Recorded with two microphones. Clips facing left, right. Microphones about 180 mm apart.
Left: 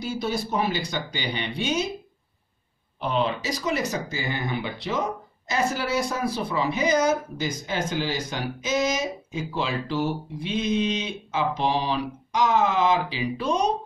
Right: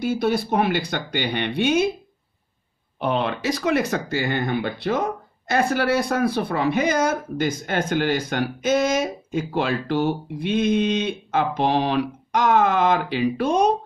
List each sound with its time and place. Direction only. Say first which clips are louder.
0.0 s speech: right 6 dB; 55° right (ahead or behind)
3.0 s speech: right 2 dB; 60° right (ahead or behind)